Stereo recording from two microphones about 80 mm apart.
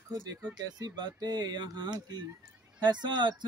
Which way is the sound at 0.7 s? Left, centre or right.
Right.